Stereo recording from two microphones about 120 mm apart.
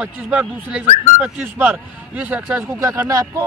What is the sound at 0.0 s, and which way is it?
Speech, 10° right (ahead or behind).